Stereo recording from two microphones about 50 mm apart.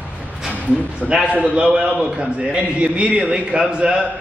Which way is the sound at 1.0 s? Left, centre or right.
Centre.